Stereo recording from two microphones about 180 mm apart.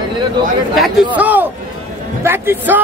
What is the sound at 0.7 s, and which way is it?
A man's voice, centre (ahead or behind).